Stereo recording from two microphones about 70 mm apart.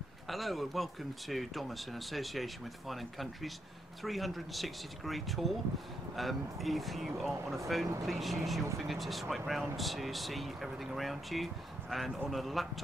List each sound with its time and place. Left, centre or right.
0.3 s speech: centre